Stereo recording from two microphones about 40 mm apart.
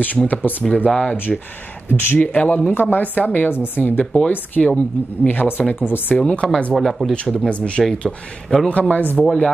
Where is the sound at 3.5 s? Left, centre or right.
Left.